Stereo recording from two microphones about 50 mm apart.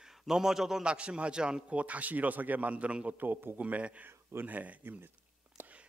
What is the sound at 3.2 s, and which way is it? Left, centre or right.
Speech, right.